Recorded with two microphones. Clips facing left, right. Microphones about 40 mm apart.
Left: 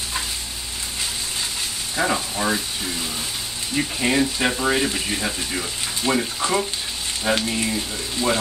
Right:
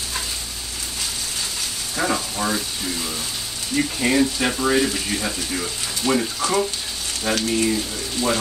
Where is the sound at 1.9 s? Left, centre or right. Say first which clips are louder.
Left 1 dB; centre.